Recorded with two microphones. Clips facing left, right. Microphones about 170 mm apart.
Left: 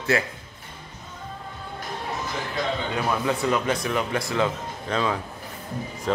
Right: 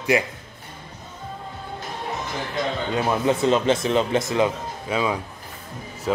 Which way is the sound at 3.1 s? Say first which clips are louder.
Right 4 dB; 25° right (ahead or behind).